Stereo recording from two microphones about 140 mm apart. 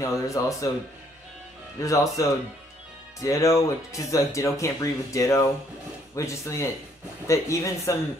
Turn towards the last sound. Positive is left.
turn(degrees=20)  # may be behind; listen again after turning